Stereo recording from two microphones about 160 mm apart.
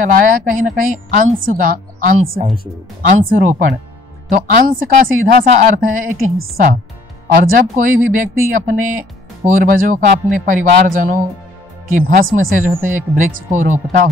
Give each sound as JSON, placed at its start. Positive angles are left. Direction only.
{"t": 0.0, "sound": "a woman's voice", "side_deg": -60}